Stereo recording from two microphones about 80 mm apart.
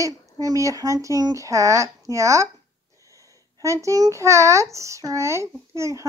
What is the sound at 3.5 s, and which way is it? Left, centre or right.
A child's voice, right.